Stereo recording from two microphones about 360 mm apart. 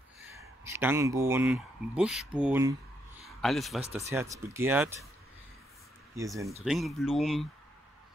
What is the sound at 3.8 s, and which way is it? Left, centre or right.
Speech, centre.